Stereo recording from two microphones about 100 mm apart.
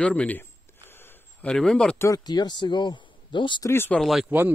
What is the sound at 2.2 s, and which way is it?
Speech, 45° left (ahead or behind).